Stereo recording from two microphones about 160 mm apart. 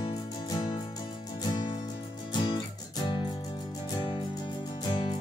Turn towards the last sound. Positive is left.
turn(degrees=30)  # may be behind; listen again after turning